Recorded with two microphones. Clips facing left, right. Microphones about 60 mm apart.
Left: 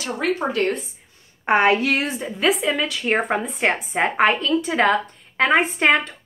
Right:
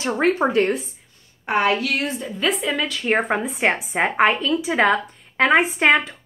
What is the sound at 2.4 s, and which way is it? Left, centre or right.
A woman's voice, centre.